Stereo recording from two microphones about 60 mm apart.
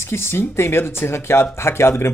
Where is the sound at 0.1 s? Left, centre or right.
Left.